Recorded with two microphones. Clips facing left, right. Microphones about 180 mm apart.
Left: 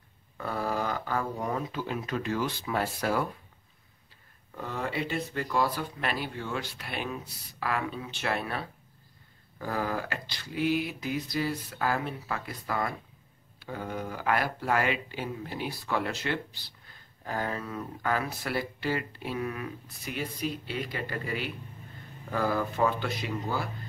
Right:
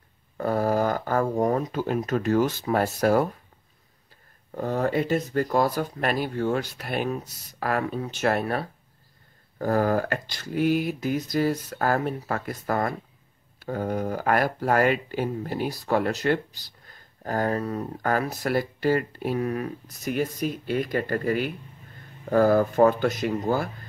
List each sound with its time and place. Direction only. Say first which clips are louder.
0.4 s speech: right 8 dB; 45° right (ahead or behind)
4.6 s speech: right 8 dB; 45° right (ahead or behind)